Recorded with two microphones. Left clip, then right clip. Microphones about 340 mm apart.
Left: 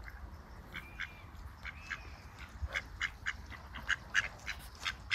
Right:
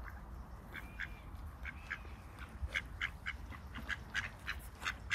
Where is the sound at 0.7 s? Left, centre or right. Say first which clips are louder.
Left 2 dB; centre.